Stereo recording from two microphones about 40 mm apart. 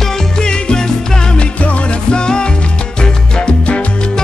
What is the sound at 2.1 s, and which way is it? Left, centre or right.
Music, left.